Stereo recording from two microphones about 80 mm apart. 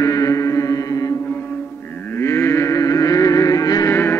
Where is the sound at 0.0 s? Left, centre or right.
Left.